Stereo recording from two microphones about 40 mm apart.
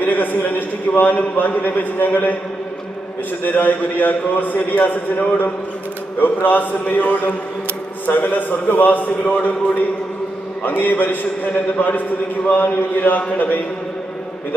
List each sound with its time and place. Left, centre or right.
0.0 s a man's voice: left
3.4 s a man's voice: left
12.4 s a man's voice: left